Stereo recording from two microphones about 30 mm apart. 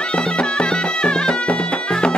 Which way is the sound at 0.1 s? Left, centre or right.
Left.